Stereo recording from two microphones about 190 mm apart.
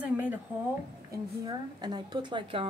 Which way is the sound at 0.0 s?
10° right (ahead or behind).